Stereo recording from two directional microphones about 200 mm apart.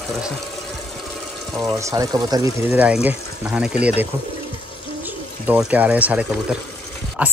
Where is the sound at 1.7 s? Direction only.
15° right (ahead or behind).